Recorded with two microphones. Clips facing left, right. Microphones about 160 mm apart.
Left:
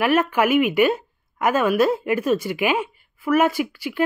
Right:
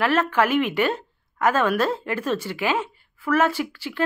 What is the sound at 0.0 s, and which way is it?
A woman's voice, 10° left (ahead or behind).